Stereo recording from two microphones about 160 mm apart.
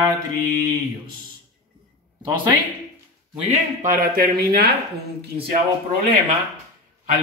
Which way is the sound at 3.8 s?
60° right (ahead or behind).